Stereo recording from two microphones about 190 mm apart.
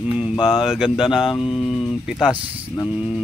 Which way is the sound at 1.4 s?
25° left (ahead or behind).